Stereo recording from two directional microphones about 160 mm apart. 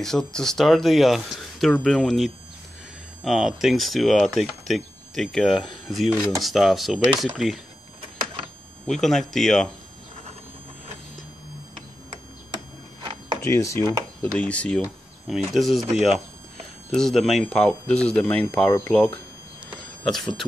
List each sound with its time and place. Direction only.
0.0 s speech: 5° left (ahead or behind)
8.8 s speech: centre (ahead or behind)
13.4 s speech: 20° left (ahead or behind); by 15.8 s centre (ahead or behind)
16.9 s speech: centre (ahead or behind)